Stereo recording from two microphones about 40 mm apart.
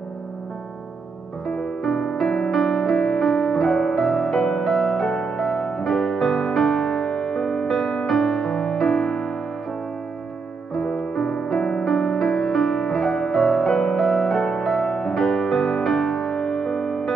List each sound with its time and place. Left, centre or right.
1.5 s music: centre
4.7 s music: centre
5.1 s music: centre
10.7 s music: centre